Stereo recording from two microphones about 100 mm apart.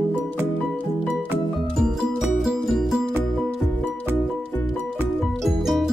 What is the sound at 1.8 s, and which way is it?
Music, 5° right (ahead or behind).